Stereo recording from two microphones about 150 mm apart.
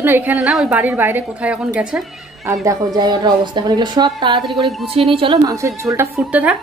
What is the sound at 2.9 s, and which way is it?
A woman's voice, 30° right (ahead or behind).